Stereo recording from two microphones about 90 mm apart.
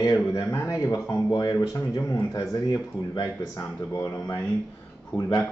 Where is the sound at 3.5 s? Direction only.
40° left (ahead or behind).